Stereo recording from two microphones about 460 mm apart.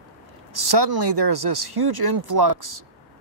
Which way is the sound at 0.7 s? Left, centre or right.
Right.